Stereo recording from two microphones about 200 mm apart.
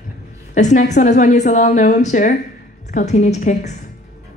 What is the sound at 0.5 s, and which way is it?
A woman's voice, 35° left (ahead or behind).